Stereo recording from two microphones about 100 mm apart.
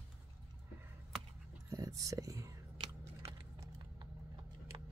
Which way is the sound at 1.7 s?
35° right (ahead or behind).